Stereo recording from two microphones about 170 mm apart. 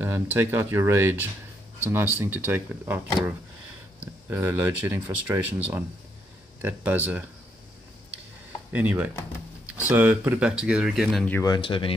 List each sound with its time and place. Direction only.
0.0 s speech: 15° right (ahead or behind)
4.3 s speech: 15° right (ahead or behind)
8.7 s speech: 10° right (ahead or behind)
11.4 s speech: 30° left (ahead or behind)